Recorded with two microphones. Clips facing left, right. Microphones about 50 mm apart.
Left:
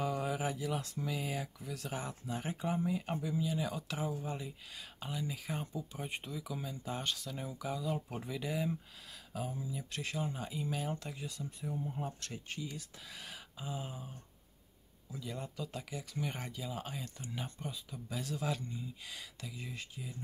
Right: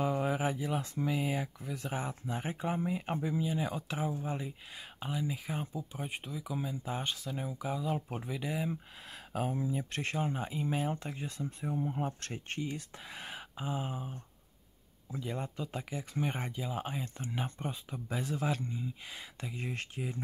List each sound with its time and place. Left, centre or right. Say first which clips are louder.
0.0 s speech: right 4 dB; right
9.3 s speech: right 7 dB; right
15.1 s speech: right 4 dB; right
19.5 s speech: right 8 dB; right